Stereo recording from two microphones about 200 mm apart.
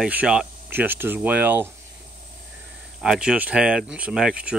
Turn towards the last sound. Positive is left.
turn(degrees=-5)  # may be behind; listen again after turning